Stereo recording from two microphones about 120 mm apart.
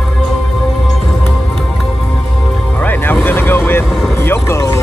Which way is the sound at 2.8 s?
15° left (ahead or behind).